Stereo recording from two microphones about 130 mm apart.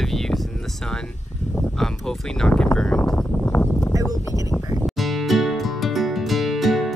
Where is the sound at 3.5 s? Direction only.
15° left (ahead or behind).